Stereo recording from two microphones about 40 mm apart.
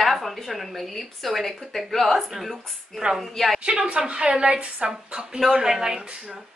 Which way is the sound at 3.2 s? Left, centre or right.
Centre.